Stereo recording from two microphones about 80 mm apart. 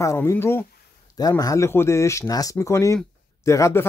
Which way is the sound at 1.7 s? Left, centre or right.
Left.